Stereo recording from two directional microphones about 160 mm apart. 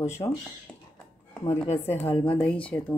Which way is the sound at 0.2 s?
30° left (ahead or behind).